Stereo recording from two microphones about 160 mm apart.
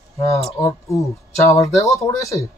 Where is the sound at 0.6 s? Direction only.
20° left (ahead or behind).